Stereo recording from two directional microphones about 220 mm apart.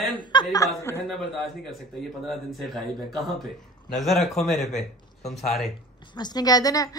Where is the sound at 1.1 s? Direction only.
Centre (ahead or behind).